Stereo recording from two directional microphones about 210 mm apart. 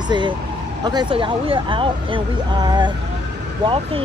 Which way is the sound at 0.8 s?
20° right (ahead or behind).